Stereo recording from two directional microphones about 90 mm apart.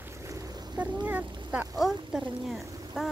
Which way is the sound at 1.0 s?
20° right (ahead or behind).